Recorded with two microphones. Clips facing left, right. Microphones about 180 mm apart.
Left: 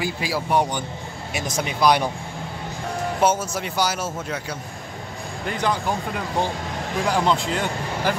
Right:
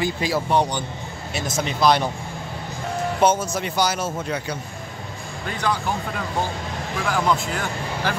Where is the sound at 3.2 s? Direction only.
10° left (ahead or behind).